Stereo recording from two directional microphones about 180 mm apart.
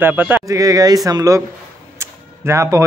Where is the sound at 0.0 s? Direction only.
10° right (ahead or behind).